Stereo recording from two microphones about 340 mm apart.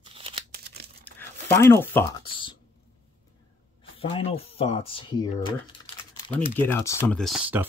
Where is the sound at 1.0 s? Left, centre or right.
Centre.